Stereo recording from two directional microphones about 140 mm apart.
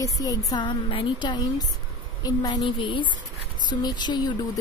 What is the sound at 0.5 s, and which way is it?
Speech, 35° left (ahead or behind).